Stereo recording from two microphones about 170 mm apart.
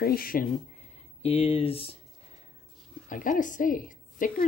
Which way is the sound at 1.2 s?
35° left (ahead or behind).